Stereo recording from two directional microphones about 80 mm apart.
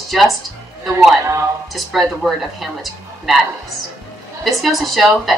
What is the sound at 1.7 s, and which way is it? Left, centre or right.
Speech, centre.